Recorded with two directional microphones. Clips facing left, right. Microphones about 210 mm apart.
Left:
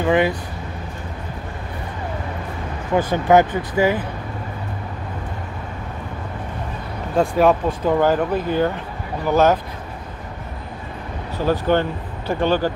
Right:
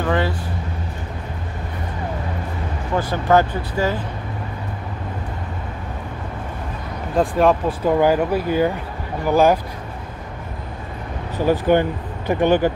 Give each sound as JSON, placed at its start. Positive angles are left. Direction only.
{"t": 0.0, "sound": "speech", "side_deg": 15}
{"t": 3.0, "sound": "speech", "side_deg": 15}
{"t": 7.2, "sound": "speech", "side_deg": 0}
{"t": 7.8, "sound": "speech", "side_deg": -10}
{"t": 11.3, "sound": "speech", "side_deg": -15}